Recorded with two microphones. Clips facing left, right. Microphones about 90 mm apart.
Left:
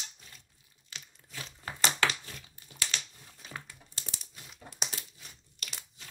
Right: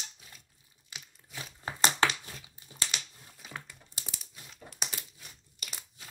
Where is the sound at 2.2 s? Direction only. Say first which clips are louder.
Even; 20° right (ahead or behind).